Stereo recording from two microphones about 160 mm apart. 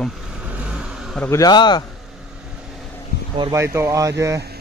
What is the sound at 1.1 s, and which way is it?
Speech, 20° left (ahead or behind).